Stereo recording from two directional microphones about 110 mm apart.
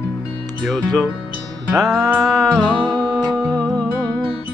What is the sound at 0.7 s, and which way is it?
Music, 5° left (ahead or behind).